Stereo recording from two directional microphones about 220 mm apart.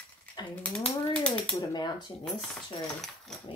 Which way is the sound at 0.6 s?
5° left (ahead or behind).